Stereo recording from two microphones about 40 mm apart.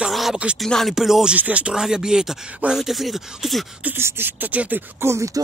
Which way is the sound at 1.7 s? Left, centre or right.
Centre.